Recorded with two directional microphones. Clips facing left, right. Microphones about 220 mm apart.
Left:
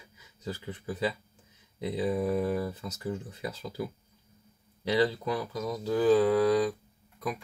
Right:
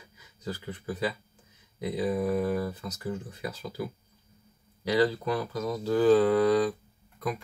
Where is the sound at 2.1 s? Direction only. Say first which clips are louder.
Right 1 dB; centre (ahead or behind).